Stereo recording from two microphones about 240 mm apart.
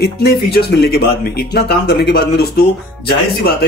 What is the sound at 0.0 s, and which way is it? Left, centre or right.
Speech, left.